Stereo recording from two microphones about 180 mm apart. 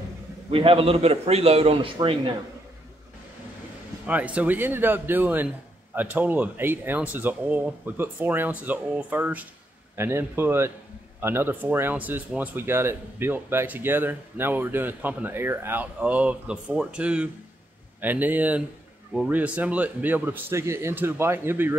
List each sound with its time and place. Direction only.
0.5 s a man's voice: 30° right (ahead or behind)
4.0 s speech: 5° right (ahead or behind)